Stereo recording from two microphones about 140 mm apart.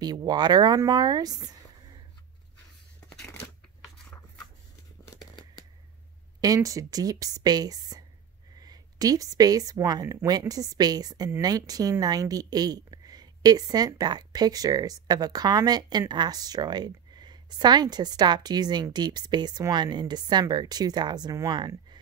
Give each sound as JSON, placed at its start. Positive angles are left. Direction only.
{"t": 0.0, "sound": "speech", "side_deg": -30}
{"t": 3.1, "sound": "a sound", "side_deg": 10}
{"t": 6.4, "sound": "a woman's voice", "side_deg": -25}